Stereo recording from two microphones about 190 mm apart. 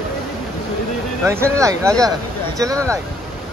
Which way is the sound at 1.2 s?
15° right (ahead or behind).